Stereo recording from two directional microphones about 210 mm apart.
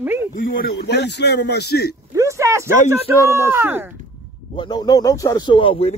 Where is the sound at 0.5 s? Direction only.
45° left (ahead or behind).